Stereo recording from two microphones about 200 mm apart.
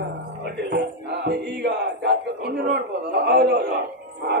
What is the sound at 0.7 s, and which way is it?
Music, 65° right (ahead or behind).